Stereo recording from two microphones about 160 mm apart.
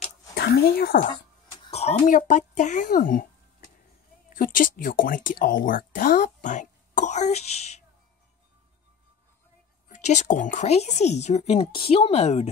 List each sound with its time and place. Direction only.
0.3 s speech: 85° left
1.7 s a sound: 40° left (ahead or behind)
2.1 s speech: 55° left (ahead or behind)
4.4 s speech: 55° left (ahead or behind); by 7.7 s 40° left (ahead or behind)
9.8 s a woman's voice: 50° left (ahead or behind)